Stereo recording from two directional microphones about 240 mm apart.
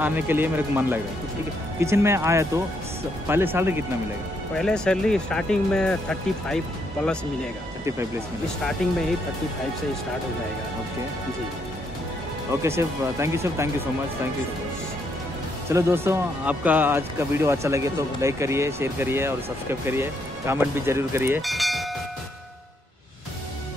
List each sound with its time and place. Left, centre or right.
0.0 s speech: centre
4.6 s speech: centre
12.6 s speech: centre
15.7 s speech: centre